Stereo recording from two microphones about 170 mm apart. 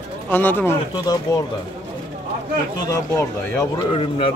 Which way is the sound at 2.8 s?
15° left (ahead or behind).